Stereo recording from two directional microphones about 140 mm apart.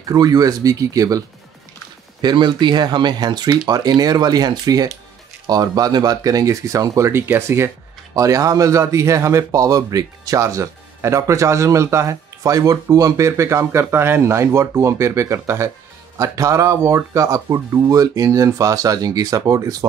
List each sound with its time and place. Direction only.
0.1 s speech: 25° right (ahead or behind)
2.2 s speech: 30° right (ahead or behind)